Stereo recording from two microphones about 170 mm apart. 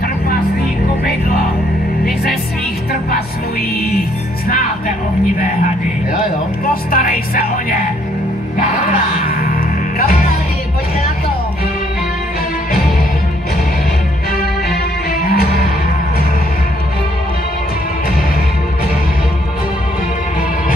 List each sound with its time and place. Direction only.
6.7 s speech: 60° left (ahead or behind)
9.3 s music: 60° left (ahead or behind)
14.3 s music: 65° left (ahead or behind)